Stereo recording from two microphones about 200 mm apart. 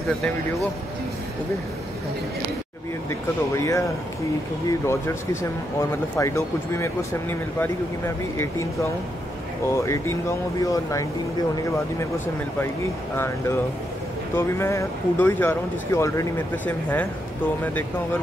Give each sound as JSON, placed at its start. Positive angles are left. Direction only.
{"t": 3.1, "sound": "speech", "side_deg": 15}
{"t": 9.7, "sound": "speech", "side_deg": 15}
{"t": 14.3, "sound": "speech", "side_deg": 15}